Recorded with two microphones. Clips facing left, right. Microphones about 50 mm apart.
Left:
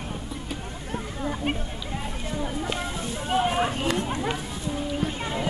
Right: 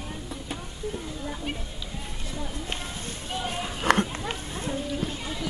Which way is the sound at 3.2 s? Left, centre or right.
Left.